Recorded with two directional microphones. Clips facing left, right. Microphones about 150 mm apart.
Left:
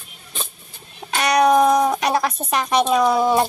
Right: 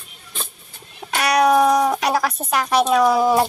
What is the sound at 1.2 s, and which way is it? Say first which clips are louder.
Speech: even; 5° right (ahead or behind).